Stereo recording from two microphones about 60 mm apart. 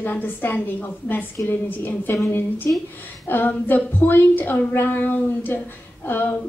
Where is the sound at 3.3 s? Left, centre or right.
Left.